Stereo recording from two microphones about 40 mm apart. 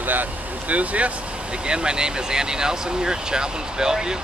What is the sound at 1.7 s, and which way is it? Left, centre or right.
Speech, right.